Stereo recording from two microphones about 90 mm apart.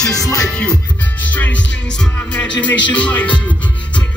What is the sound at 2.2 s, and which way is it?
Music, 15° left (ahead or behind).